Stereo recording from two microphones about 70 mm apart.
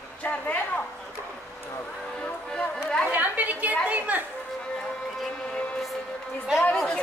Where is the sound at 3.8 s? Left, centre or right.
Right.